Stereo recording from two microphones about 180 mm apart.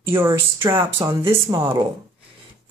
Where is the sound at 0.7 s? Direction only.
15° right (ahead or behind).